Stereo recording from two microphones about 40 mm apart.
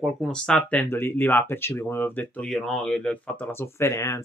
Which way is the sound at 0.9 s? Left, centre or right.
Left.